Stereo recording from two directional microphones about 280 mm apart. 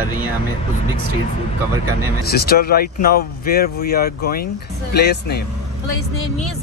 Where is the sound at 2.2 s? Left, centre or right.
Left.